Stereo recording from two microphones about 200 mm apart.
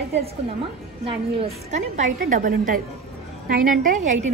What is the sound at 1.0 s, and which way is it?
A woman's voice, 35° right (ahead or behind).